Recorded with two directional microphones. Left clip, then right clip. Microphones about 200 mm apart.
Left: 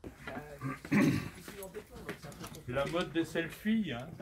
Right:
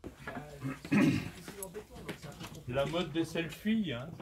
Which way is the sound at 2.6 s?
50° right (ahead or behind).